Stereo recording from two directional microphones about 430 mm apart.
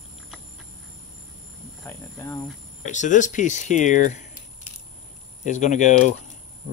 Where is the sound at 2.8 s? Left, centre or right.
Centre.